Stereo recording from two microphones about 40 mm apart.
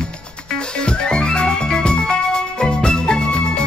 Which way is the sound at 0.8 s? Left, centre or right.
Centre.